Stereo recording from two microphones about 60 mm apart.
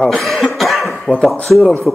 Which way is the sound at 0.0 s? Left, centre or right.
Centre.